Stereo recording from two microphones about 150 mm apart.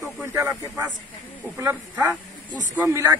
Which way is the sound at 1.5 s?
15° right (ahead or behind).